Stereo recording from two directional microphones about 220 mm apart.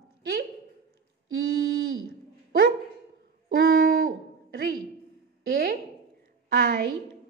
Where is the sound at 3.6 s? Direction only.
50° right (ahead or behind).